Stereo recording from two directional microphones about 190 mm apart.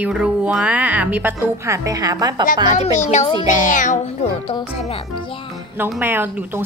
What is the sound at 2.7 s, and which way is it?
Speech, 40° left (ahead or behind).